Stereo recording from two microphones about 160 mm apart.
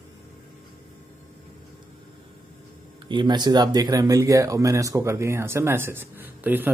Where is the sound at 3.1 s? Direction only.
30° right (ahead or behind).